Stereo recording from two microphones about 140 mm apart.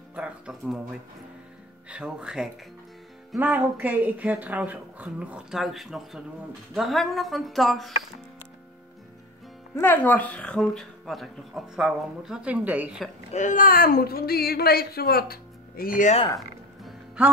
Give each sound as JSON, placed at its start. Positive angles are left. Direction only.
{"t": 0.1, "sound": "speech", "side_deg": -5}
{"t": 1.9, "sound": "speech", "side_deg": -10}
{"t": 9.8, "sound": "speech", "side_deg": 15}
{"t": 13.3, "sound": "speech", "side_deg": 60}
{"t": 16.3, "sound": "music", "side_deg": -5}